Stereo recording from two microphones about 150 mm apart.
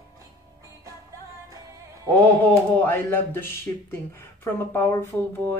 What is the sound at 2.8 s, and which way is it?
Speech, 10° left (ahead or behind).